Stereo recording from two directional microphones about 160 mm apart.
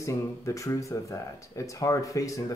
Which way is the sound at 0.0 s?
20° left (ahead or behind).